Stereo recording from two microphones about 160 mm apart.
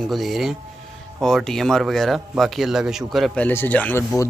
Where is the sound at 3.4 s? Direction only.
10° left (ahead or behind).